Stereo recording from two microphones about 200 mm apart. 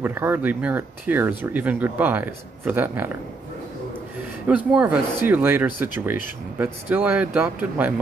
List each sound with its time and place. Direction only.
0.0 s speech: 10° right (ahead or behind)
4.5 s speech: 5° right (ahead or behind)